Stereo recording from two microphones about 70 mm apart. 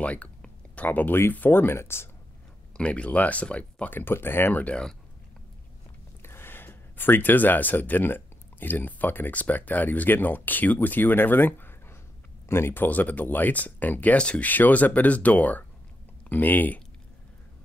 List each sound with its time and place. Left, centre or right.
0.0 s speech: centre; by 2.0 s left
2.8 s speech: centre
6.2 s speech: left